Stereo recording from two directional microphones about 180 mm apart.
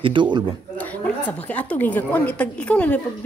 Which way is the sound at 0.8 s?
10° left (ahead or behind).